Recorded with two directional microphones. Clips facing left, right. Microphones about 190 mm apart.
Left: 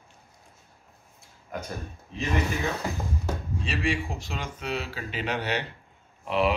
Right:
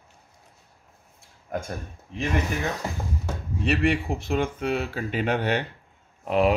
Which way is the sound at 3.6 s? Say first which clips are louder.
Right 6 dB; 60° right (ahead or behind).